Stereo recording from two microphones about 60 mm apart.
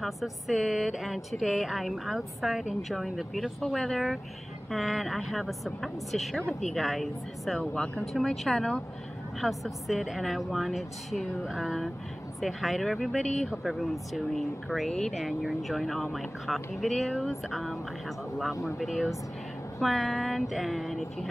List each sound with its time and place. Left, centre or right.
0.0 s speech: centre
7.7 s speech: centre
8.0 s speech: centre
18.8 s speech: centre